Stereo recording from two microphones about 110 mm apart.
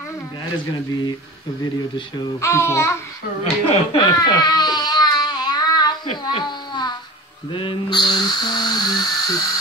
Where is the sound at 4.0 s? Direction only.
40° left (ahead or behind).